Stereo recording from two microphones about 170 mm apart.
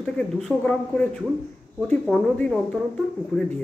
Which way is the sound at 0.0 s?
5° left (ahead or behind).